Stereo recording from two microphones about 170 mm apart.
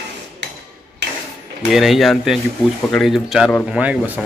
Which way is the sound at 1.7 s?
Centre (ahead or behind).